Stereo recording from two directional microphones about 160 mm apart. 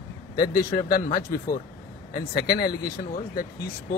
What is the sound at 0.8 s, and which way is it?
Speech, 60° left (ahead or behind).